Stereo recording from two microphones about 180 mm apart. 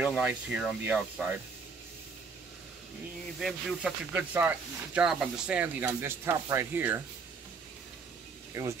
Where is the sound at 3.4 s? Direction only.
5° right (ahead or behind).